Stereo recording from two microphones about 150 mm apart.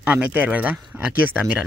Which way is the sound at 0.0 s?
10° right (ahead or behind).